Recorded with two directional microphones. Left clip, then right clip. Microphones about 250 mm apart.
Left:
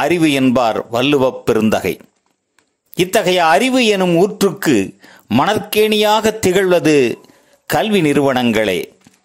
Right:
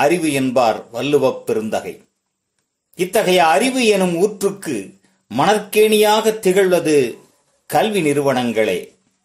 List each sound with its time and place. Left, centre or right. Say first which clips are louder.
0.0 s speech: left 2 dB; left